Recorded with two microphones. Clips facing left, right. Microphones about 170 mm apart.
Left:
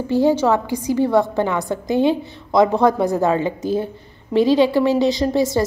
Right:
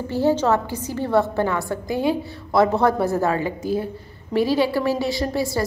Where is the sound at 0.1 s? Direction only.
15° left (ahead or behind).